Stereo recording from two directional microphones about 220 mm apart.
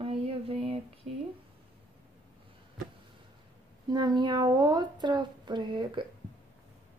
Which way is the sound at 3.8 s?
20° right (ahead or behind).